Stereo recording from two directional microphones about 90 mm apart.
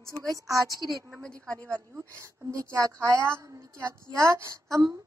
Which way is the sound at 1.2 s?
10° left (ahead or behind).